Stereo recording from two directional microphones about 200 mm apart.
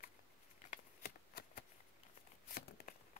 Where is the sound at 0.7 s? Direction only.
45° left (ahead or behind).